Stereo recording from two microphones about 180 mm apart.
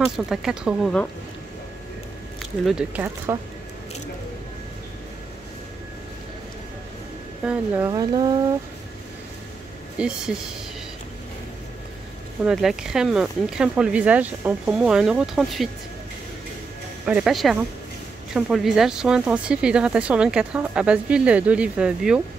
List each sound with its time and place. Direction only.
0.0 s speech: 5° right (ahead or behind)
2.6 s speech: 5° right (ahead or behind)
7.4 s speech: 10° right (ahead or behind)
7.9 s speech: 25° right (ahead or behind)
9.9 s speech: 5° right (ahead or behind)
12.4 s speech: 5° right (ahead or behind)
17.0 s speech: 5° right (ahead or behind)